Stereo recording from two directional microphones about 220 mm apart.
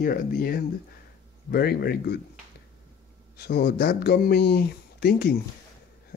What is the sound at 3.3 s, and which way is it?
Speech, 45° left (ahead or behind).